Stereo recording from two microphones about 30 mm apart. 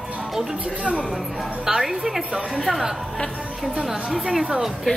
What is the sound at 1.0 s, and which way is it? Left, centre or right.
A woman's voice, centre.